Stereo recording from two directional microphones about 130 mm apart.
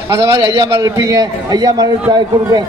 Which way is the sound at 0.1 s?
20° right (ahead or behind).